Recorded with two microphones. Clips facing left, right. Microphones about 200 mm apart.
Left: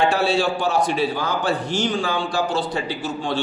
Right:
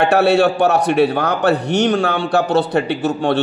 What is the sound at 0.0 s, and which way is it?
A man's voice, 65° right (ahead or behind).